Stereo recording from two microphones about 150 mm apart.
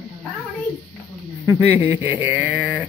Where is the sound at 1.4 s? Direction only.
20° right (ahead or behind).